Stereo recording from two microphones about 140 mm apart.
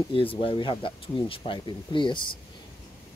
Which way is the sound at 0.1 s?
40° left (ahead or behind).